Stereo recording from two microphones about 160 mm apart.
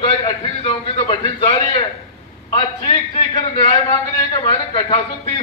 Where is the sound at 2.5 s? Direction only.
30° left (ahead or behind).